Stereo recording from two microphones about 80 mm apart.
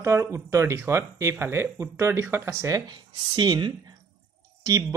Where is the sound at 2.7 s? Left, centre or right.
Right.